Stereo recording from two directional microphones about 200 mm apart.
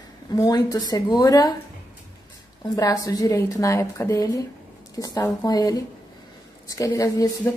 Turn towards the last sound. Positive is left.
turn(degrees=15)  # may be behind; listen again after turning